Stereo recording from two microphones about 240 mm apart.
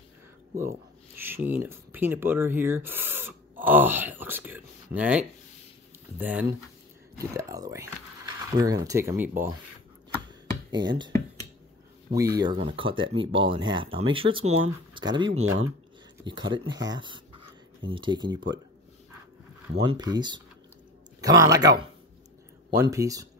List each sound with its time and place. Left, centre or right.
1.2 s speech: centre
10.7 s speech: centre
19.7 s speech: right
22.8 s speech: centre